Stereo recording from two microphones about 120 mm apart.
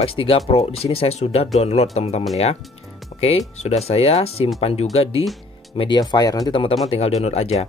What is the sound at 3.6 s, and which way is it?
Speech, 60° left (ahead or behind).